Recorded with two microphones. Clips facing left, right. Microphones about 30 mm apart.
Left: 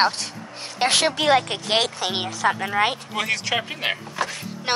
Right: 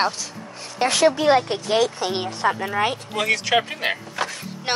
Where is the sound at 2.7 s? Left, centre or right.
Left.